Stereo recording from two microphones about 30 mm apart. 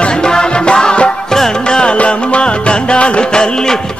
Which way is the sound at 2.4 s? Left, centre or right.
Left.